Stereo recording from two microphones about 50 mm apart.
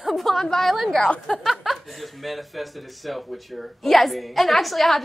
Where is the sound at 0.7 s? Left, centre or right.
Centre.